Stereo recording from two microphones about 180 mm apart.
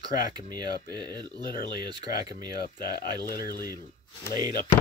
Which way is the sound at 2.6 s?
55° left (ahead or behind).